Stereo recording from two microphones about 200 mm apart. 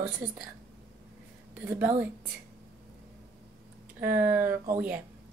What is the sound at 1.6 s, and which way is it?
Speech, 10° right (ahead or behind).